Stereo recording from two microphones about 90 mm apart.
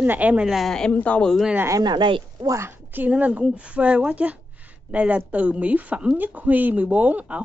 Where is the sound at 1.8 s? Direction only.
60° right (ahead or behind).